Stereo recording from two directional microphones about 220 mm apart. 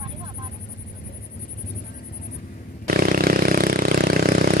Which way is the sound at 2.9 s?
40° right (ahead or behind).